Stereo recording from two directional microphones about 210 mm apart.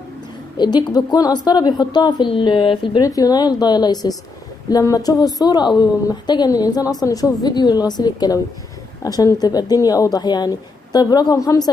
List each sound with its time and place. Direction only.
0.6 s a woman's voice: 20° left (ahead or behind)